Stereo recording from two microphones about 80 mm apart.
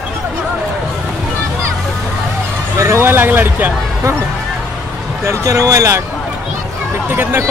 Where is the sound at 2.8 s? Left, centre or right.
Right.